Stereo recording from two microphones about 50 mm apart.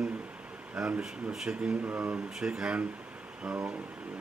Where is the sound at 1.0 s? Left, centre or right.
Centre.